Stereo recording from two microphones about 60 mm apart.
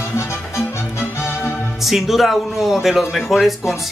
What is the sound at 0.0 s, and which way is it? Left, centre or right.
Music, left.